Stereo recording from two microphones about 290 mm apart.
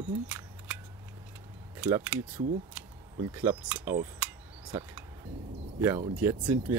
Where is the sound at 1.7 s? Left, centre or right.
Centre.